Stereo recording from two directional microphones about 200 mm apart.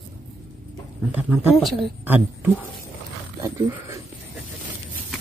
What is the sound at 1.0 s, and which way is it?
Speech, 5° right (ahead or behind).